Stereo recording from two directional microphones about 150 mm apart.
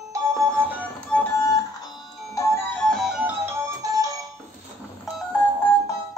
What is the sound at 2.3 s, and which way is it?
Music, 15° left (ahead or behind).